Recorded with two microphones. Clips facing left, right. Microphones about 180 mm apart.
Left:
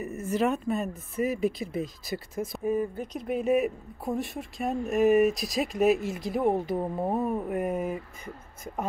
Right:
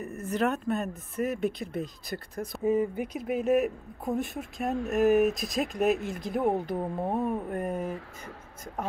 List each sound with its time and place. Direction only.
0.0 s speech: 5° left (ahead or behind)
2.6 s speech: 20° right (ahead or behind)
3.1 s speech: 5° right (ahead or behind)